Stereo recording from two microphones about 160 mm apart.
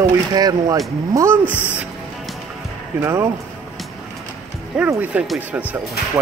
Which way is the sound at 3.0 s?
15° right (ahead or behind).